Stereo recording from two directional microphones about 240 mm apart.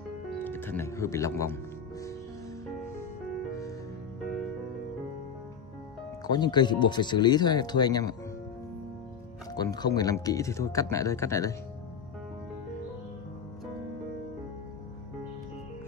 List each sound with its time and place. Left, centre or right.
0.4 s music: centre
6.2 s speech: centre
9.6 s speech: centre